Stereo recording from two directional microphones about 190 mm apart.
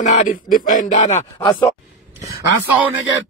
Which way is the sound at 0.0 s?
40° left (ahead or behind).